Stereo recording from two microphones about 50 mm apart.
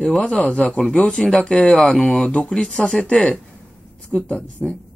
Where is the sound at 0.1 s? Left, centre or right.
Centre.